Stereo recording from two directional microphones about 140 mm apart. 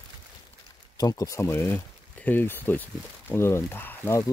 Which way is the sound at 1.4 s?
15° left (ahead or behind).